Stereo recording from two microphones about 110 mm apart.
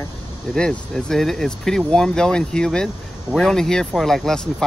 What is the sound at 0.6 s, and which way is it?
Speech, 5° left (ahead or behind).